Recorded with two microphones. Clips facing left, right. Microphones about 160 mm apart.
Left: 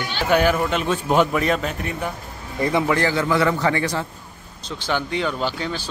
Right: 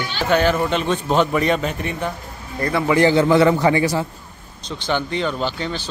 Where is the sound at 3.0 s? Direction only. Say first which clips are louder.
Right 6 dB; 25° right (ahead or behind).